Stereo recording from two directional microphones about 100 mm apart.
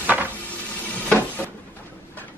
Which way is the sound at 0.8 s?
15° left (ahead or behind).